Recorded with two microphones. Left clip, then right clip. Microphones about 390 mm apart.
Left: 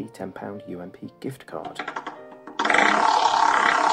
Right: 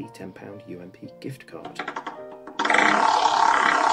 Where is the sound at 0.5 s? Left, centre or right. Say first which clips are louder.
Left 3 dB; centre.